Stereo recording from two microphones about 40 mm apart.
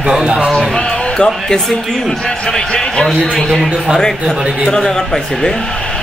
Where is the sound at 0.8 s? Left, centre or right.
Left.